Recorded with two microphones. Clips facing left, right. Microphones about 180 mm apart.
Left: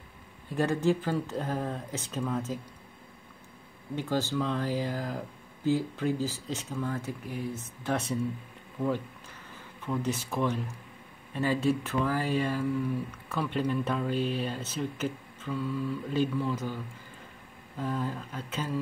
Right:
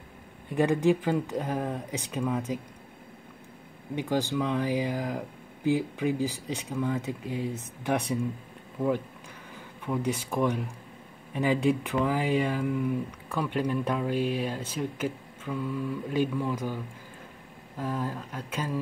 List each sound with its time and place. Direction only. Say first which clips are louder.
0.5 s speech: right 3 dB; 15° right (ahead or behind)
3.9 s speech: right 2 dB; 15° right (ahead or behind)
9.8 s speech: right 2 dB; 15° right (ahead or behind)